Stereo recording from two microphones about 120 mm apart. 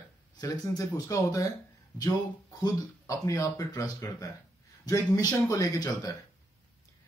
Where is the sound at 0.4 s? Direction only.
30° left (ahead or behind).